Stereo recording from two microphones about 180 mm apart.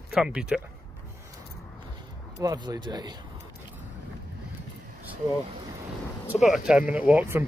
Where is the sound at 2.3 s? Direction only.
20° right (ahead or behind).